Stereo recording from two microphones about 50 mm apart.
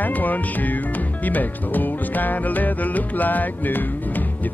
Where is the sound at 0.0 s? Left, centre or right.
Left.